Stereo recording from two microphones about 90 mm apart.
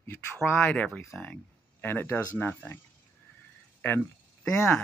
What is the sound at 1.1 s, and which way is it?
Speech, 15° left (ahead or behind).